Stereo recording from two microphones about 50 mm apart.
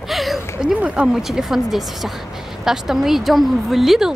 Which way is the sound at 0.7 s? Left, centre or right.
Right.